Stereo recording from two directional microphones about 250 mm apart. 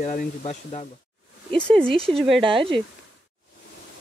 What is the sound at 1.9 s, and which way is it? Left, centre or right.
Speech, right.